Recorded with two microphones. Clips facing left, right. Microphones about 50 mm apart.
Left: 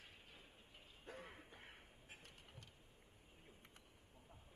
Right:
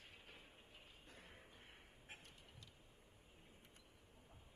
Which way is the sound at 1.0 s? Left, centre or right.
Left.